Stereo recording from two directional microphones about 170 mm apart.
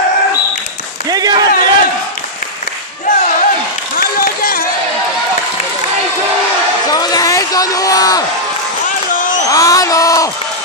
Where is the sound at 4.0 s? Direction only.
60° left (ahead or behind).